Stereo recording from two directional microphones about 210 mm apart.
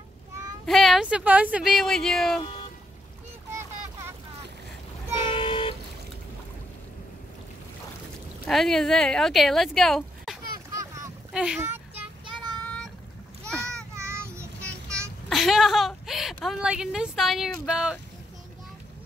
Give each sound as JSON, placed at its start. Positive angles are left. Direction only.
{"t": 0.7, "sound": "speech", "side_deg": 0}
{"t": 5.1, "sound": "toot", "side_deg": 25}
{"t": 8.5, "sound": "speech", "side_deg": 0}
{"t": 10.7, "sound": "boat", "side_deg": -15}
{"t": 11.3, "sound": "a sound", "side_deg": -5}
{"t": 13.5, "sound": "a sound", "side_deg": 5}
{"t": 13.9, "sound": "child singing", "side_deg": -10}
{"t": 14.6, "sound": "a sound", "side_deg": 5}
{"t": 17.6, "sound": "speech", "side_deg": -5}